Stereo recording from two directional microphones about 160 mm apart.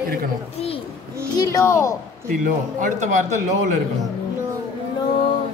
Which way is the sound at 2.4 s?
50° right (ahead or behind).